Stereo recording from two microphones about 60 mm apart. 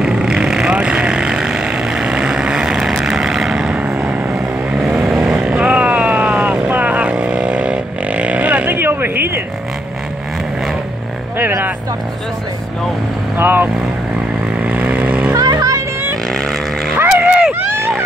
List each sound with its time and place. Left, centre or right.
0.0 s vehicle: centre
3.7 s vehicle: centre
8.7 s a sound: right
13.4 s vehicle: right
14.6 s vehicle: right
15.3 s vehicle: right
16.3 s vehicle: centre
17.1 s a sound: centre
17.6 s a sound: right